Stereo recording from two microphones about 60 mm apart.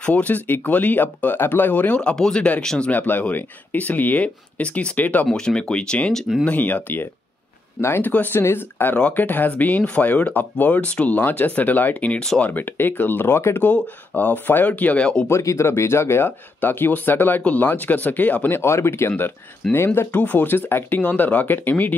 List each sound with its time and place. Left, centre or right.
0.0 s speech: left
2.0 s speech: centre
2.9 s speech: left
5.3 s speech: centre; by 7.1 s left
7.8 s speech: left
8.9 s speech: left
13.6 s speech: left
15.2 s speech: left
18.5 s speech: left
20.1 s speech: left
21.0 s speech: left